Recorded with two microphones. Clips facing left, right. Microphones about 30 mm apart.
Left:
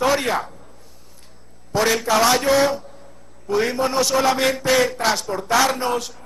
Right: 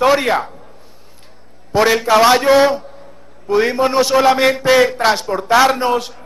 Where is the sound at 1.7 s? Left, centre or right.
Right.